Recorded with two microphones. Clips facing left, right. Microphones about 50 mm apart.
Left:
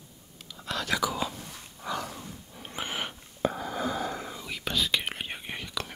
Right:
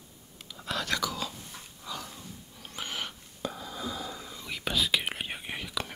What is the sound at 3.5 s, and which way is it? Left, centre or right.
Whispering, left.